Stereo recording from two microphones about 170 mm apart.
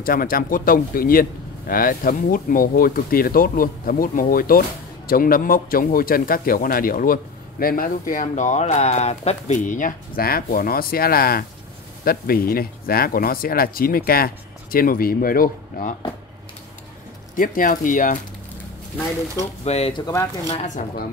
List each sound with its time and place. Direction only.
0.0 s speech: 55° left (ahead or behind)
17.4 s speech: 55° left (ahead or behind)
19.6 s speech: 40° left (ahead or behind)